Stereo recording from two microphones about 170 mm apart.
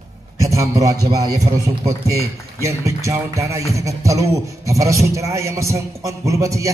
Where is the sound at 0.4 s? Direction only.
20° right (ahead or behind).